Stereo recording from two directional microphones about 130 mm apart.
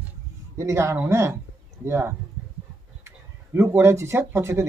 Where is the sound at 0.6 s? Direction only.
20° right (ahead or behind).